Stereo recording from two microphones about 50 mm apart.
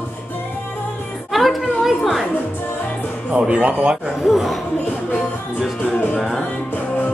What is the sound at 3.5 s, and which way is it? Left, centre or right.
Speech, right.